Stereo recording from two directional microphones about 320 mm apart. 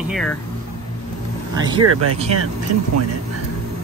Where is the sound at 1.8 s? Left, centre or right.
Right.